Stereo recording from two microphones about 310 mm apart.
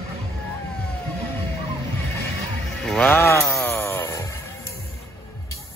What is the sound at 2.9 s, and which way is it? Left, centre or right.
Music, centre.